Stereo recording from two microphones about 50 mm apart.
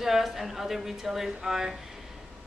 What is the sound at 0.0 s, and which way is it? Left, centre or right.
A woman's voice, centre.